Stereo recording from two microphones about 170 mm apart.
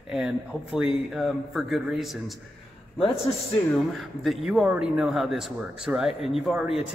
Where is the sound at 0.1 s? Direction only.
5° right (ahead or behind).